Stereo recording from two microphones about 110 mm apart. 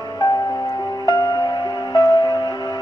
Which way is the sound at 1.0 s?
35° left (ahead or behind).